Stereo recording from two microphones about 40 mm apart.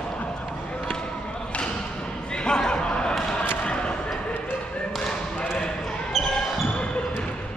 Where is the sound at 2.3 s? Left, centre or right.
Centre.